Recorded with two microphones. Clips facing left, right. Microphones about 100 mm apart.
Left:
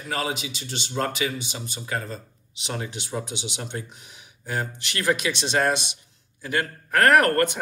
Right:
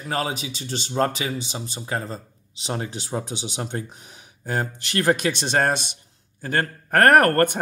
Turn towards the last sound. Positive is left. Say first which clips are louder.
# right 3 dB
turn(degrees=-45)  # may be behind; listen again after turning